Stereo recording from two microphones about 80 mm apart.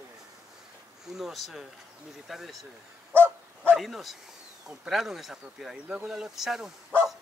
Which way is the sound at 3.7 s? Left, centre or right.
Centre.